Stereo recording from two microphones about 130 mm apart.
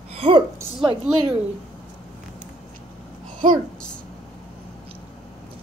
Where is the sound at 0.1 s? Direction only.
50° right (ahead or behind).